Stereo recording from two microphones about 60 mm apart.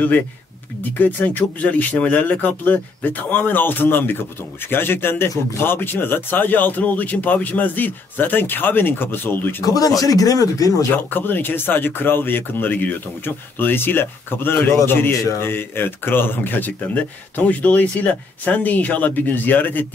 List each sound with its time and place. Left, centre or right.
0.9 s speech: left
9.7 s speech: left
11.1 s speech: left